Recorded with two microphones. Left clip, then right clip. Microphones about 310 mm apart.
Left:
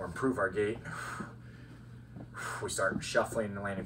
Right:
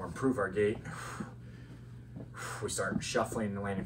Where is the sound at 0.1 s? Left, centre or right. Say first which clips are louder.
Even; centre.